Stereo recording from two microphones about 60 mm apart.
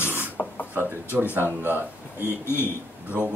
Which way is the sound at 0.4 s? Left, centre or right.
Left.